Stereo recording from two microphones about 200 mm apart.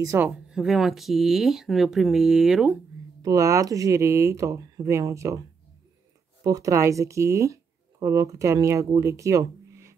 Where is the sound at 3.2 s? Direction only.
15° right (ahead or behind).